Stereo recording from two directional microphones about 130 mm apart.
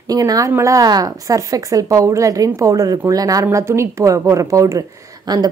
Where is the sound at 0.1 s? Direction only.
30° right (ahead or behind).